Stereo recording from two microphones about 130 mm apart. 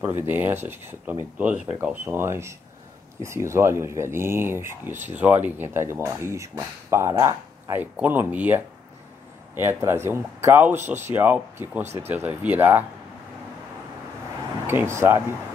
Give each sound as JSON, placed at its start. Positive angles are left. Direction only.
{"t": 0.0, "sound": "speech", "side_deg": -15}
{"t": 14.7, "sound": "speech", "side_deg": -20}